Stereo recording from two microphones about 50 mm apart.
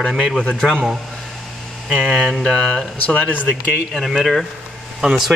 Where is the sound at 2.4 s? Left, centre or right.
Centre.